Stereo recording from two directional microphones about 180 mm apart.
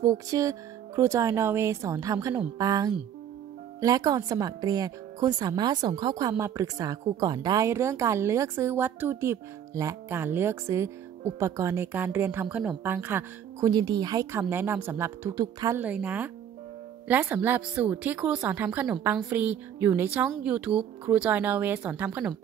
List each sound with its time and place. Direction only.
0.0 s a woman's voice: 20° right (ahead or behind)